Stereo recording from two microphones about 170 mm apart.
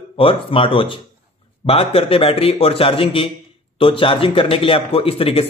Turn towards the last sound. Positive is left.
turn(degrees=35)  # may be behind; listen again after turning